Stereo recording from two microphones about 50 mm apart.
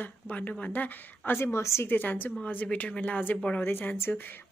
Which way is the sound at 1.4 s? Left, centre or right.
Left.